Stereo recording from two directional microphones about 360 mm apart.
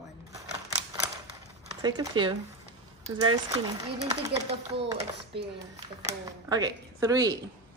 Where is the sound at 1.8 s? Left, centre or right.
Centre.